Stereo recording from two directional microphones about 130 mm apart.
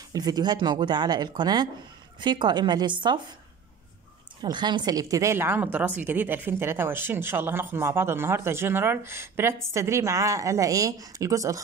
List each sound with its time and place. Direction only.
0.1 s speech: 30° right (ahead or behind)
4.4 s a woman's voice: 35° right (ahead or behind)